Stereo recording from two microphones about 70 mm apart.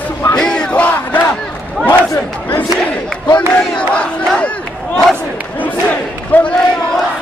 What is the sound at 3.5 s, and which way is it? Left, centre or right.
Crowd, centre.